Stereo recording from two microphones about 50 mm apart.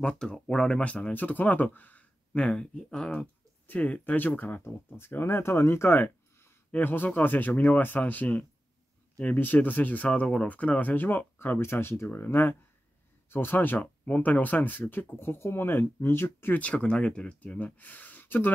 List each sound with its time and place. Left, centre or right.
0.0 s speech: centre
0.8 s speech: left
2.3 s speech: centre
3.6 s speech: left
11.3 s speech: left
12.2 s speech: left
16.5 s speech: left